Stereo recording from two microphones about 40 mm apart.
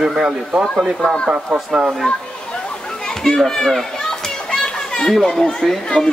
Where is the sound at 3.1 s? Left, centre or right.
Centre.